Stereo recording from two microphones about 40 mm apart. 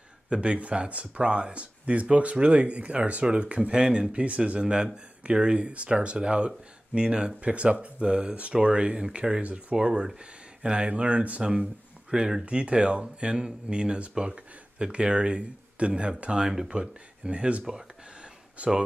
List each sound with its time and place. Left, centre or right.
0.3 s speech: right
3.7 s speech: right
9.4 s speech: right
12.1 s speech: centre
12.4 s speech: right
17.6 s a sound: centre
18.6 s speech: right